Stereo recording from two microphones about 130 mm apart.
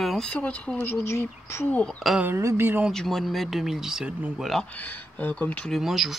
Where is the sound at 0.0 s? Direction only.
Centre (ahead or behind); by 1.8 s 20° left (ahead or behind).